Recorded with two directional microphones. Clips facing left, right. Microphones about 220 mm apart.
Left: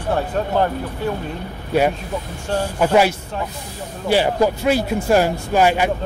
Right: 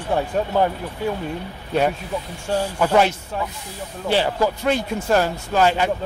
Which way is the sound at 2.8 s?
10° left (ahead or behind).